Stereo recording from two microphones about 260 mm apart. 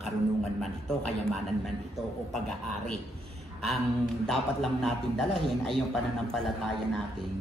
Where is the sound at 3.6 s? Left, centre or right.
Centre.